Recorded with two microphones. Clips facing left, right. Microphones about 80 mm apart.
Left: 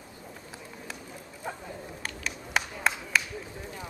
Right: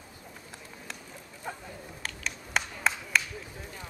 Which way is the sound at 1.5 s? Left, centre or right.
Centre.